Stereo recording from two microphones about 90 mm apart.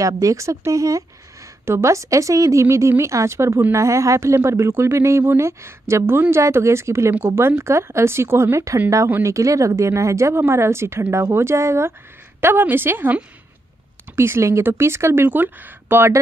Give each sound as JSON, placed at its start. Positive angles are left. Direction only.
{"t": 0.0, "sound": "a woman's voice", "side_deg": -35}